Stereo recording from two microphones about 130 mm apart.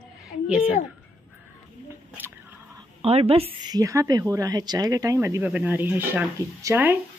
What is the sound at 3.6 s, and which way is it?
Speech, 30° right (ahead or behind).